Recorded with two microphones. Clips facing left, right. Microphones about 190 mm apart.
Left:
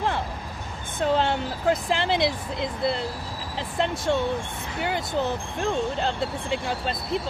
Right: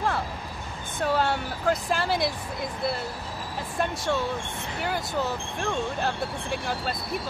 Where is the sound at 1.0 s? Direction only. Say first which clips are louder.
Left 2 dB; 20° left (ahead or behind).